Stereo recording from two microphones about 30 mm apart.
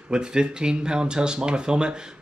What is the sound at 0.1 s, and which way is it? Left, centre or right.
Speech, right.